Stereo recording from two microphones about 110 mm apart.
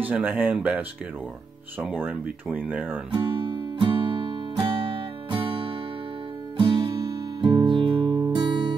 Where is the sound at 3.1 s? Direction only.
45° right (ahead or behind).